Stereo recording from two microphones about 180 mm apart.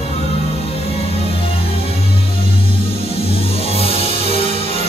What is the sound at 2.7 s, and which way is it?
Music, 30° left (ahead or behind).